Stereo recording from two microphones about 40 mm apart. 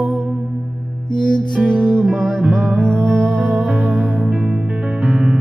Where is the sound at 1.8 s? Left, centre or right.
Centre.